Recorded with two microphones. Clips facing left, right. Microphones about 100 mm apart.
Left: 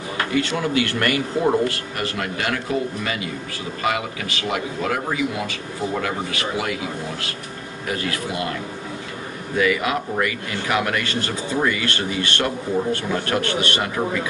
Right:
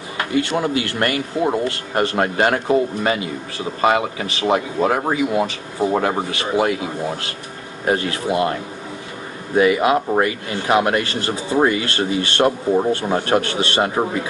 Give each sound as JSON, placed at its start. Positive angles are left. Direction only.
{"t": 0.3, "sound": "speech", "side_deg": -30}
{"t": 9.6, "sound": "speech", "side_deg": -25}